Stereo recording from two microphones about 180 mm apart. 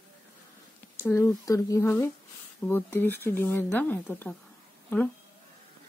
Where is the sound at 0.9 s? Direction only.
15° left (ahead or behind).